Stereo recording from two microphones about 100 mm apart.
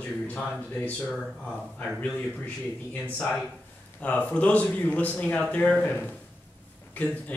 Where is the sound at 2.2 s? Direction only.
15° left (ahead or behind).